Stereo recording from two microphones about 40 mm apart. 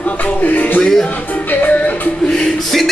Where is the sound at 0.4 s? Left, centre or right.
Left.